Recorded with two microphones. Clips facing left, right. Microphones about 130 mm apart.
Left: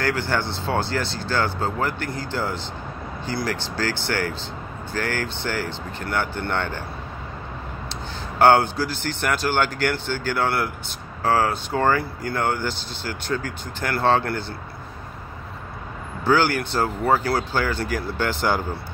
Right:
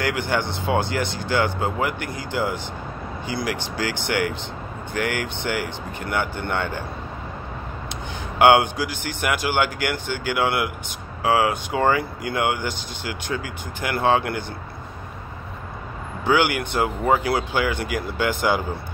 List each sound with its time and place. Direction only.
0.0 s speech: 15° right (ahead or behind)
8.4 s speech: 15° right (ahead or behind)
16.3 s speech: 15° right (ahead or behind)